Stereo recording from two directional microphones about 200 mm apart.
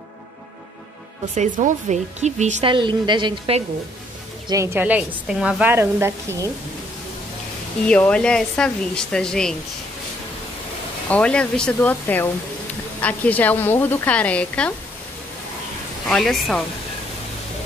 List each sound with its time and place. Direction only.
1.3 s speech: 35° right (ahead or behind)
2.7 s a woman's voice: 25° right (ahead or behind)
4.5 s a woman's voice: 10° right (ahead or behind)
7.9 s speech: 5° left (ahead or behind)
11.1 s speech: 5° left (ahead or behind)
16.1 s speech: centre (ahead or behind)